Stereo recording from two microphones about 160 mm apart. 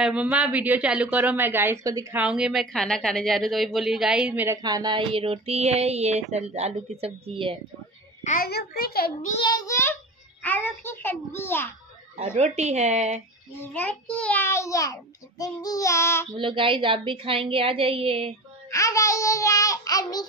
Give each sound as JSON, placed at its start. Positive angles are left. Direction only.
{"t": 0.0, "sound": "speech", "side_deg": -5}
{"t": 2.1, "sound": "a woman's voice", "side_deg": -5}
{"t": 4.6, "sound": "speech", "side_deg": -25}
{"t": 8.2, "sound": "a child's voice", "side_deg": 50}
{"t": 8.5, "sound": "a child's voice", "side_deg": 80}
{"t": 9.4, "sound": "a child's voice", "side_deg": 25}
{"t": 12.2, "sound": "speech", "side_deg": -40}
{"t": 13.7, "sound": "a child's voice", "side_deg": 10}
{"t": 16.3, "sound": "speech", "side_deg": -30}
{"t": 18.7, "sound": "a child's voice", "side_deg": 20}